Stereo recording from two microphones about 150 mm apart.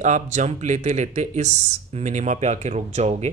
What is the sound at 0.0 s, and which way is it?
Speech, 50° right (ahead or behind).